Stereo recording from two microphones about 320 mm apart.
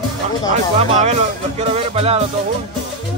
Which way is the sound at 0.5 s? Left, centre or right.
Right.